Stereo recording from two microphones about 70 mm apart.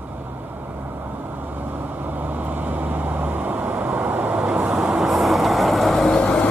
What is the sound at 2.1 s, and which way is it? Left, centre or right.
Vehicle, right.